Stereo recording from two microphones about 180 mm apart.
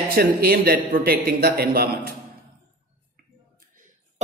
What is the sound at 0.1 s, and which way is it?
A man's voice, 60° right (ahead or behind).